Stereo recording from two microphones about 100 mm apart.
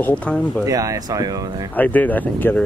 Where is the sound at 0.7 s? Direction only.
35° right (ahead or behind).